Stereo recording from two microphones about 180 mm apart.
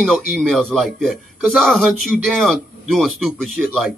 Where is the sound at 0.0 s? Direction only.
Centre (ahead or behind).